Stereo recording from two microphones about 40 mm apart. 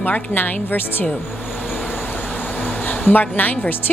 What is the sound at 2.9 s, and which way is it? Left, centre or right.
Speech, left.